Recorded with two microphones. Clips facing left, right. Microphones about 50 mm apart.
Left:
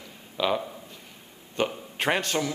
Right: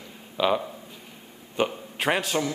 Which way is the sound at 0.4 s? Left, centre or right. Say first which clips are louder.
Right 3 dB; centre.